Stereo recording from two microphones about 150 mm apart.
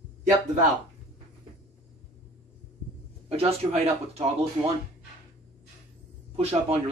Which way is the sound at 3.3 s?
40° right (ahead or behind).